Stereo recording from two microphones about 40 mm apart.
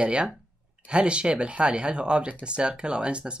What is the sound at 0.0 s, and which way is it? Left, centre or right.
Speech, right.